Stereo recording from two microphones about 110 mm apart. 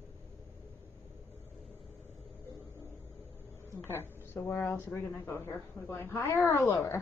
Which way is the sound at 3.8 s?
20° left (ahead or behind).